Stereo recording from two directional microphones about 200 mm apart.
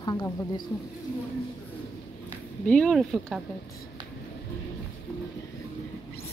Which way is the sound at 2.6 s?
5° left (ahead or behind).